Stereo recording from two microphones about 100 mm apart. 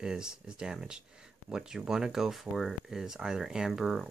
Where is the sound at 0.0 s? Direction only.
10° right (ahead or behind).